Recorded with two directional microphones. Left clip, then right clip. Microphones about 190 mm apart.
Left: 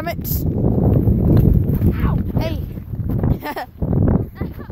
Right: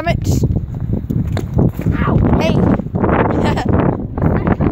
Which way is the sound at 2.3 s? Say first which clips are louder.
Right 11 dB; 20° right (ahead or behind).